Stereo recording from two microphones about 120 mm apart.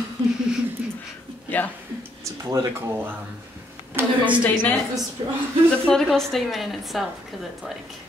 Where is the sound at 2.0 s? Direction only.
20° right (ahead or behind).